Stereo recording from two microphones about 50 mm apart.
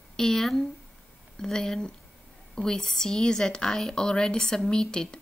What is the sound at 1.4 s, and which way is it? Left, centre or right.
Speech, centre.